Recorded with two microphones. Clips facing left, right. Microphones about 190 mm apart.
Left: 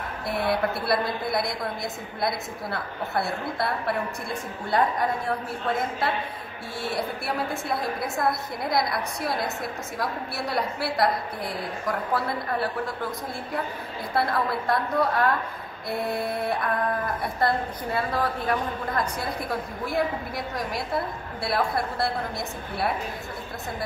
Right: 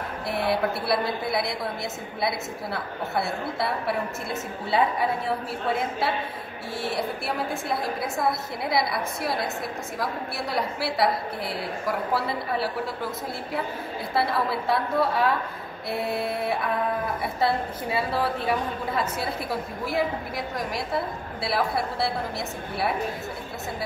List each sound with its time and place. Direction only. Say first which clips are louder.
0.3 s a woman's voice: even; centre (ahead or behind)
10.5 s a woman's voice: even; centre (ahead or behind)
14.1 s a woman's voice: even; 5° right (ahead or behind)